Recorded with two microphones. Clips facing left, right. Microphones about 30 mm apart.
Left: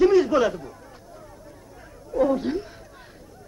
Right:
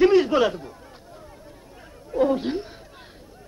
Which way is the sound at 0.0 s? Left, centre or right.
Right.